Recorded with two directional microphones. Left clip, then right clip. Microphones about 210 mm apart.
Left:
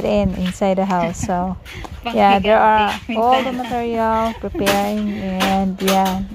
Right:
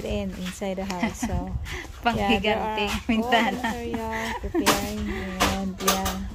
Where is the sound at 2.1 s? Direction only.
20° left (ahead or behind).